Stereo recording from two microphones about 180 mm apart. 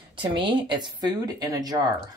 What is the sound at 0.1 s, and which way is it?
Speech, 25° right (ahead or behind).